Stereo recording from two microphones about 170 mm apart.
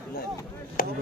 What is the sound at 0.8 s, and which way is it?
Chop, 55° left (ahead or behind).